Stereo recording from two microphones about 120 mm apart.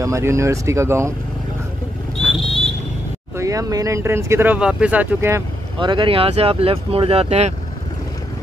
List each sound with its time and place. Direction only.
0.0 s speech: 25° right (ahead or behind)
2.2 s vehicle: 5° left (ahead or behind)
3.3 s speech: 30° right (ahead or behind)
4.6 s speech: 10° right (ahead or behind)
5.8 s speech: 45° right (ahead or behind); by 7.5 s 65° right (ahead or behind)